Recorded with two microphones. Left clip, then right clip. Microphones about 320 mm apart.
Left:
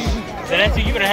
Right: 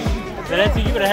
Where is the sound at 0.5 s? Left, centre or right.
Right.